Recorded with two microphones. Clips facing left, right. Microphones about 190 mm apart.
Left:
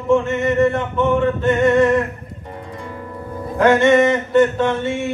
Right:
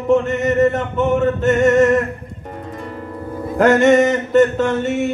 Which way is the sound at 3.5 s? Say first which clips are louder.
Right 1 dB; 40° right (ahead or behind).